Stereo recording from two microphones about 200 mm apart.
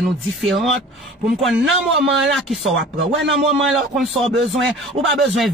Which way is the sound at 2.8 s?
65° right (ahead or behind).